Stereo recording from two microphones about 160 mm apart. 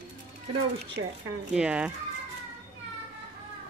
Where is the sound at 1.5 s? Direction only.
5° right (ahead or behind).